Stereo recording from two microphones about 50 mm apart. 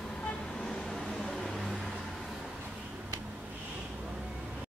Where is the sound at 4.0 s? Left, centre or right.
Centre.